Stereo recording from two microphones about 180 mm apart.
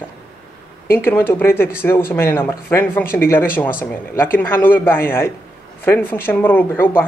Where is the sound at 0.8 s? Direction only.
10° left (ahead or behind).